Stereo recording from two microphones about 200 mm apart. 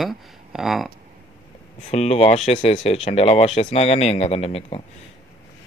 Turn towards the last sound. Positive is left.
turn(degrees=30)  # may be behind; listen again after turning